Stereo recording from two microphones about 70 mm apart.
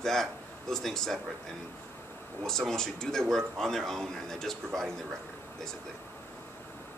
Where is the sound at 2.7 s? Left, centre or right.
Centre.